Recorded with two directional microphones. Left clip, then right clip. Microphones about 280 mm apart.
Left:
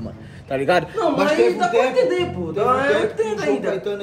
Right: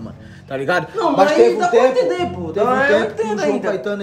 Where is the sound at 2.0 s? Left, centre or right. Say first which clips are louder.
Right 1 dB; right.